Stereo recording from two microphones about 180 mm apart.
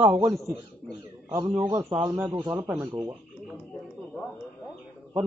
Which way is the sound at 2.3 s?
20° right (ahead or behind).